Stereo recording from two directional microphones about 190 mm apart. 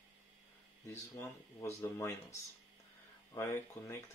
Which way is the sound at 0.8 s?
15° left (ahead or behind).